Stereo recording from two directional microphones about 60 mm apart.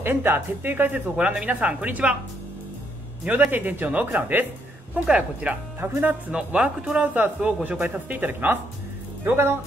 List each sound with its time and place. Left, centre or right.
0.0 s speech: right
1.1 s speech: centre
3.5 s speech: right
4.9 s speech: right
5.8 s speech: right
6.3 s speech: centre; by 9.6 s right